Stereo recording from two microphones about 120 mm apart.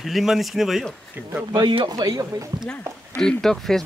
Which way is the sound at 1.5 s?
40° right (ahead or behind).